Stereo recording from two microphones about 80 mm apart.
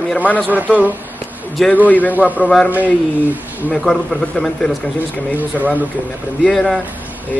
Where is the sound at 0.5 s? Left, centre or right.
Centre.